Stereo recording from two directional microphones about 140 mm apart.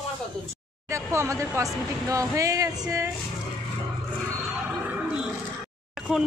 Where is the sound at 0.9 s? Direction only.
20° right (ahead or behind).